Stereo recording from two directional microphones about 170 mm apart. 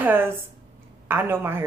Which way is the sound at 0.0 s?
10° right (ahead or behind).